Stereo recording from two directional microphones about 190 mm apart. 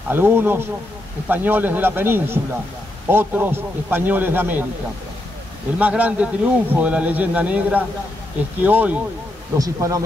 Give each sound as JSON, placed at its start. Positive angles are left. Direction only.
{"t": 0.1, "sound": "a man's voice", "side_deg": -10}
{"t": 5.8, "sound": "a man's voice", "side_deg": -10}